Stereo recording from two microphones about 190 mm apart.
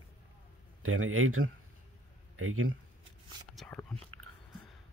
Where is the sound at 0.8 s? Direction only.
90° right.